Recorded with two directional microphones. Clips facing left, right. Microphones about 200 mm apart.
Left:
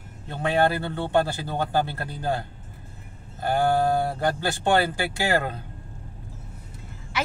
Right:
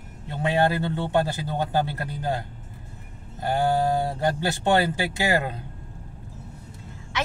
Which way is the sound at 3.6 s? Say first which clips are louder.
Left 1 dB; 20° right (ahead or behind).